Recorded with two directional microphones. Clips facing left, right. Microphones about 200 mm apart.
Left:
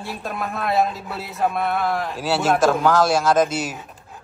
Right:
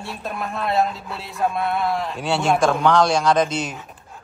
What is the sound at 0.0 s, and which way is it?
A man's voice, centre (ahead or behind).